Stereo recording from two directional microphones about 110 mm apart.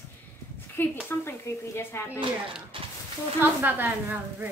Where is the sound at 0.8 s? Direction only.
20° left (ahead or behind).